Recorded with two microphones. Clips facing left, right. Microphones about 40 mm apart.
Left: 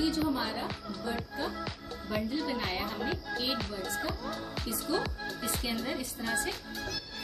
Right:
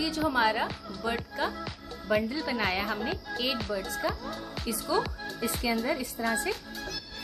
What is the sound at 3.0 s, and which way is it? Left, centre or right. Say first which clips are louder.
Speech: right 2 dB; centre.